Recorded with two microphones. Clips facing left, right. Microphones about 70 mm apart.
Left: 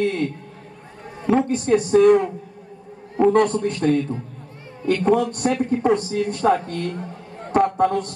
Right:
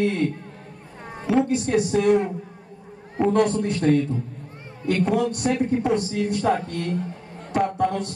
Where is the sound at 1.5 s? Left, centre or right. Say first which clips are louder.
Left 3 dB; left.